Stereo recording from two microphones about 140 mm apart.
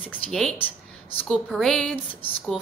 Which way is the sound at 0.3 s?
5° left (ahead or behind).